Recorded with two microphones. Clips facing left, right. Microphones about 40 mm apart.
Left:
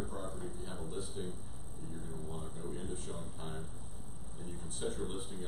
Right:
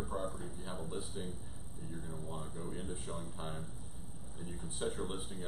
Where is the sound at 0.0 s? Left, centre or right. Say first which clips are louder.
Right 3 dB; centre.